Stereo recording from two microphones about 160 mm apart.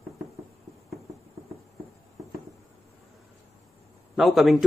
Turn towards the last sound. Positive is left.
turn(degrees=0)  # may be behind; listen again after turning